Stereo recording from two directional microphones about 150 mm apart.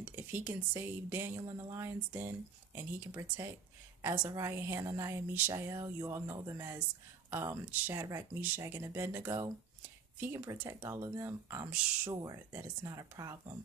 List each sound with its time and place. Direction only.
0.0 s a woman's voice: 10° right (ahead or behind)
12.2 s speech: 20° right (ahead or behind)